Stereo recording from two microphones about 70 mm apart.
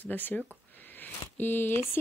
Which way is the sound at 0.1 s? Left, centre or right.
Left.